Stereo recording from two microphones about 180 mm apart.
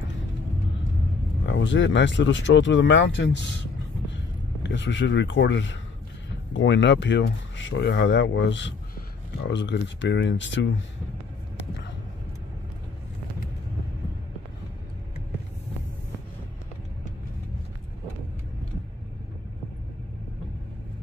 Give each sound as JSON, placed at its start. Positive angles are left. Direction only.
{"t": 1.4, "sound": "speech", "side_deg": 85}
{"t": 4.6, "sound": "speech", "side_deg": 90}